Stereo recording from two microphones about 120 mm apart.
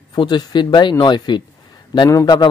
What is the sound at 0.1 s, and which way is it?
A man's voice, 35° left (ahead or behind).